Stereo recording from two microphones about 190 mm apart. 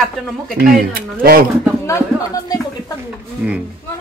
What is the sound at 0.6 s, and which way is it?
Speech, 50° right (ahead or behind).